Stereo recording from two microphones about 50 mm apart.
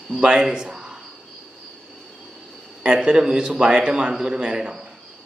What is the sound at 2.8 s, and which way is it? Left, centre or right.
A man's voice, centre.